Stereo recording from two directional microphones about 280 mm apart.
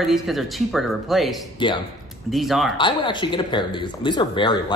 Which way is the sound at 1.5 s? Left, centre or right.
Centre.